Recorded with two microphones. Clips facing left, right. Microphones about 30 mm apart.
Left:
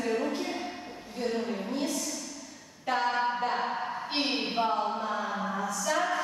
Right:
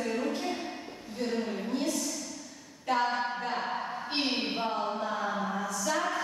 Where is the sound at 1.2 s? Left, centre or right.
Centre.